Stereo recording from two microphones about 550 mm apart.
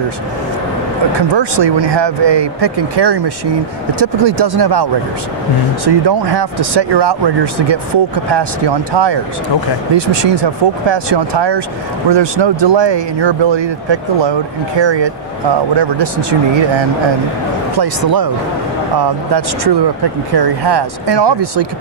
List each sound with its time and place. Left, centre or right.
1.3 s speech: right
5.9 s speech: right
17.7 s speech: right